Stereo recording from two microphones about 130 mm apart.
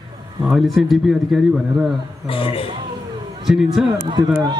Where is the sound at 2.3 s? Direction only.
45° left (ahead or behind).